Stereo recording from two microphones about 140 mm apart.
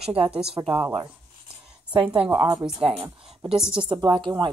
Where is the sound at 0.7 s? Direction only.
10° right (ahead or behind).